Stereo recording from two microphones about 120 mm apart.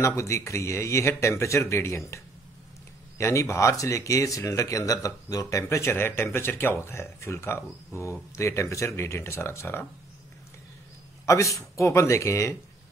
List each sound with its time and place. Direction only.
0.0 s speech: 25° left (ahead or behind)
11.2 s speech: 25° left (ahead or behind)